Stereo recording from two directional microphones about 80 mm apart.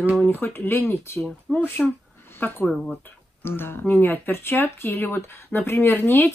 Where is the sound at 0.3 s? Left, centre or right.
Left.